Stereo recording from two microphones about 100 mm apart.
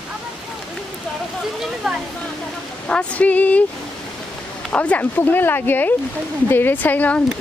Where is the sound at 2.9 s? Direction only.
10° left (ahead or behind).